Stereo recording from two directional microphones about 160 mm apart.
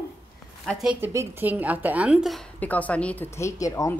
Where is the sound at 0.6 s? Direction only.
Centre (ahead or behind).